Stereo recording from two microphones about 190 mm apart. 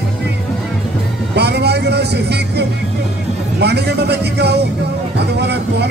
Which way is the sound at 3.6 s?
60° right (ahead or behind).